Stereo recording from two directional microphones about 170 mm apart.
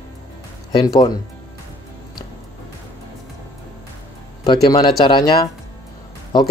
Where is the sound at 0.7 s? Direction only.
25° left (ahead or behind).